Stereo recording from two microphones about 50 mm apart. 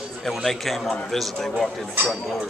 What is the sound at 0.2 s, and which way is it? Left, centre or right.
A man's voice, centre.